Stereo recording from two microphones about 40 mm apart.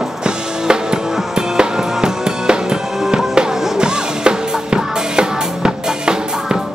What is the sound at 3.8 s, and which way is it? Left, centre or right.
Drum kit, right.